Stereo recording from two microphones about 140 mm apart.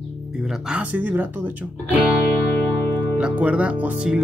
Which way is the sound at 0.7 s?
10° right (ahead or behind).